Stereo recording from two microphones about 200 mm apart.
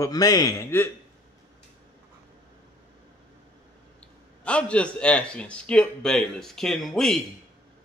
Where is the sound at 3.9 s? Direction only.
5° left (ahead or behind).